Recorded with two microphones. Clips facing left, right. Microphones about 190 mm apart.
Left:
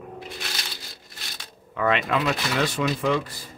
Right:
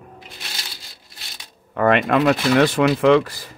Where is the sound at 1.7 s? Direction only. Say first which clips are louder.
Right 6 dB; 55° right (ahead or behind); by 3.5 s 85° right.